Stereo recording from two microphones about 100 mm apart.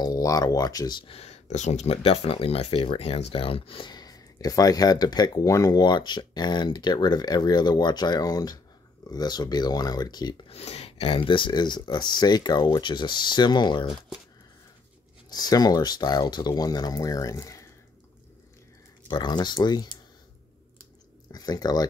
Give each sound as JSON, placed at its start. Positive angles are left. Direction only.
{"t": 0.0, "sound": "speech", "side_deg": 35}
{"t": 1.0, "sound": "speech", "side_deg": 85}
{"t": 10.5, "sound": "speech", "side_deg": 90}
{"t": 13.8, "sound": "speech", "side_deg": -5}
{"t": 15.2, "sound": "speech", "side_deg": 45}
{"t": 19.0, "sound": "speech", "side_deg": 45}
{"t": 21.3, "sound": "speech", "side_deg": 40}